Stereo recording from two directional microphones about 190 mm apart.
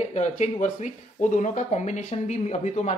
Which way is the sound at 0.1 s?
40° left (ahead or behind).